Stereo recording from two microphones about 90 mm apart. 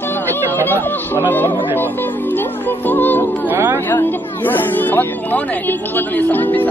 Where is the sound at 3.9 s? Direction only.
20° left (ahead or behind).